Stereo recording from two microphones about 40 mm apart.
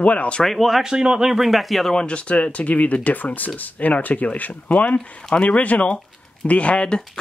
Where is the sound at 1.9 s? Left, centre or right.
Left.